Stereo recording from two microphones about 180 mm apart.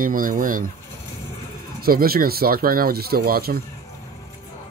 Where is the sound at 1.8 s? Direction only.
55° right (ahead or behind).